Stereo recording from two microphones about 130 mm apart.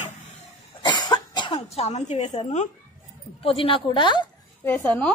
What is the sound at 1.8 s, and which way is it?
Speech, 60° left (ahead or behind).